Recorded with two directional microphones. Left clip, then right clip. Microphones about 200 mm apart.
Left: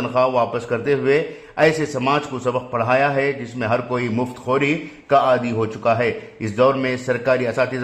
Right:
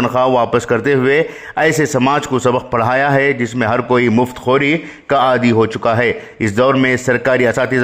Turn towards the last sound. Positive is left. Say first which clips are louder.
# right 5 dB
turn(degrees=-40)  # may be behind; listen again after turning